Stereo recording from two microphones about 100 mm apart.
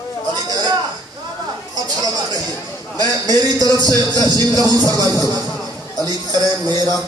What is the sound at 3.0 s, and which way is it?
A man's voice, 40° right (ahead or behind).